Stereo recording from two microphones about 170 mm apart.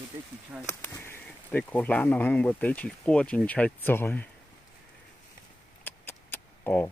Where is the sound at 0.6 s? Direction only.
15° left (ahead or behind).